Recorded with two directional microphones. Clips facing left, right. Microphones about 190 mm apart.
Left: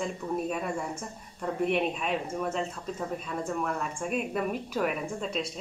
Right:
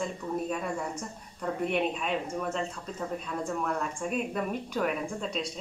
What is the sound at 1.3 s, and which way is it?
A woman's voice, centre (ahead or behind).